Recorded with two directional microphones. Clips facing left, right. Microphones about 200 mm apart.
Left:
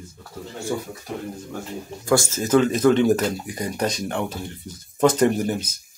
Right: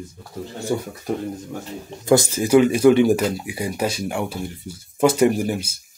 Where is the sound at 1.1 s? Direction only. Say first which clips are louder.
Right 7 dB; 50° right (ahead or behind).